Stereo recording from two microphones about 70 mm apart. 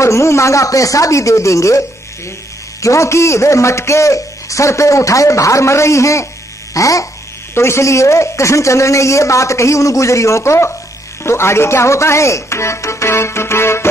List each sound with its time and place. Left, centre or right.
0.0 s a man's voice: left
6.7 s toothbrush: left
7.5 s a man's voice: left